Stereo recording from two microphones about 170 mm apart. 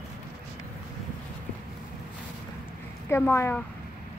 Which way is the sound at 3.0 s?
15° left (ahead or behind).